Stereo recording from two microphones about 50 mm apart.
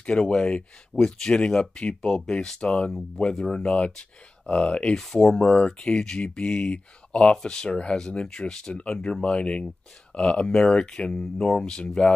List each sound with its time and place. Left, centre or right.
0.0 s speech: centre
3.6 s speech: left
4.9 s speech: centre